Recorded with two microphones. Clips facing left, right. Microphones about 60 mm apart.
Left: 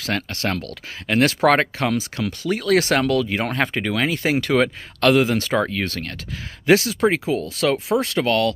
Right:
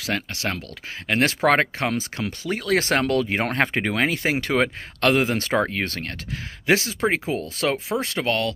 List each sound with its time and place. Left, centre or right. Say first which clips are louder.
0.0 s speech: left 2 dB; centre